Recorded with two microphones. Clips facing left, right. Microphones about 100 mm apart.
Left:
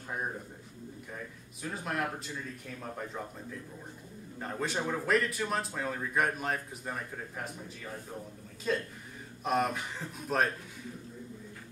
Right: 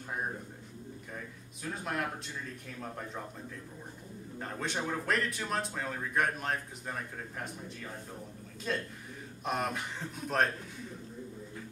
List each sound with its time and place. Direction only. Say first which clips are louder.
1.6 s speech: left 1 dB; centre (ahead or behind)
4.4 s speech: left 2 dB; centre (ahead or behind)
8.7 s speech: left 3 dB; centre (ahead or behind)